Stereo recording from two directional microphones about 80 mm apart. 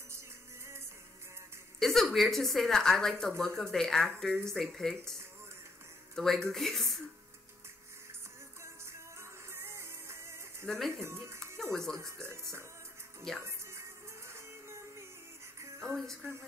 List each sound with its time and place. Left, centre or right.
1.8 s a woman's voice: centre
6.1 s a woman's voice: centre
9.5 s music: right
10.7 s a woman's voice: centre
11.0 s speech: right
11.3 s music: centre
13.4 s music: right
16.0 s a woman's voice: centre